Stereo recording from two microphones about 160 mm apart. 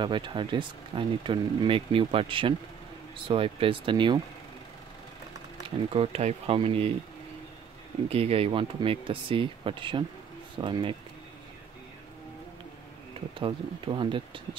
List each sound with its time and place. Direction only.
0.0 s speech: 30° right (ahead or behind)
5.9 s speech: 40° right (ahead or behind)
8.1 s speech: 35° right (ahead or behind)
13.4 s speech: 30° right (ahead or behind)